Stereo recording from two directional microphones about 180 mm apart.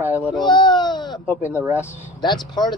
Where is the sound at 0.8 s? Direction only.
25° left (ahead or behind).